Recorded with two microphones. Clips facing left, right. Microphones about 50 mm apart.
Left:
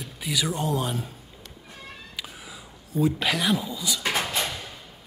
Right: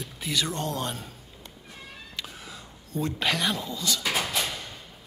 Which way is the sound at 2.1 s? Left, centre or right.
Centre.